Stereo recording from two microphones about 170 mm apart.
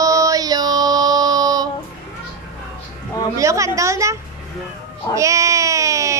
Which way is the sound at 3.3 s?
20° right (ahead or behind).